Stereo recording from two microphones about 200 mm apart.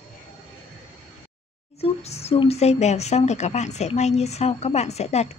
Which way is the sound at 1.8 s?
30° left (ahead or behind).